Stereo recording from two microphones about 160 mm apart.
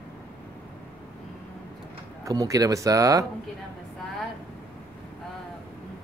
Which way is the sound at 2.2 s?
20° right (ahead or behind).